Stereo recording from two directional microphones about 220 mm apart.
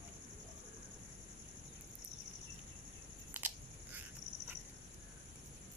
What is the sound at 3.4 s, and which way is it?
Biting, 10° right (ahead or behind).